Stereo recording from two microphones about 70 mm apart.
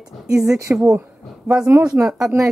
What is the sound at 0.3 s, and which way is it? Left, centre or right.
Speech, centre.